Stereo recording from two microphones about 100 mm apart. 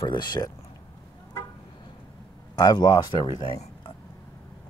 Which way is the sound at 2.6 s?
40° left (ahead or behind).